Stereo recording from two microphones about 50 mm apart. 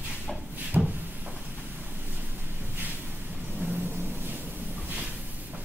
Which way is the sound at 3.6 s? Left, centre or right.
Right.